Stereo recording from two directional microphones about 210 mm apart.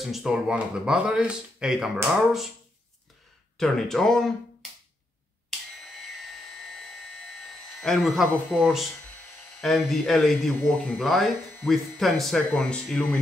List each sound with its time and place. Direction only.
0.0 s speech: centre (ahead or behind)
3.5 s speech: centre (ahead or behind)
7.8 s speech: centre (ahead or behind)